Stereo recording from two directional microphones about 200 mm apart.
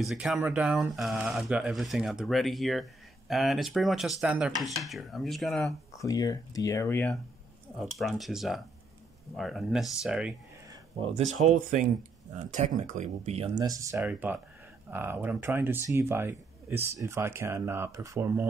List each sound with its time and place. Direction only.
0.0 s speech: centre (ahead or behind)
5.9 s speech: 15° left (ahead or behind)
8.0 s speech: centre (ahead or behind)
10.7 s speech: 30° right (ahead or behind)
13.6 s a man's voice: 15° right (ahead or behind)